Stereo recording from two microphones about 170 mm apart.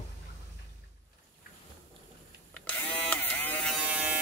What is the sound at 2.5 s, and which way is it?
Electric shaver, 5° left (ahead or behind).